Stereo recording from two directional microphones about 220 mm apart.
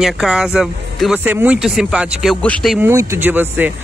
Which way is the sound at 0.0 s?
5° right (ahead or behind).